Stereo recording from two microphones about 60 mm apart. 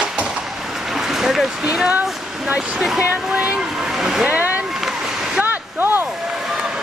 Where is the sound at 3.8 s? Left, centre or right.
Centre.